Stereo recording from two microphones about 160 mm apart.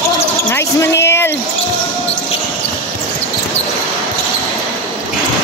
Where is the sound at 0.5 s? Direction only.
15° left (ahead or behind).